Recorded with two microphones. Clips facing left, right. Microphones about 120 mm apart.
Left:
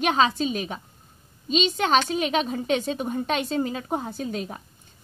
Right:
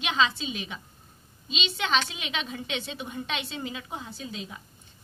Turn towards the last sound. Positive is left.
turn(degrees=50)  # may be behind; listen again after turning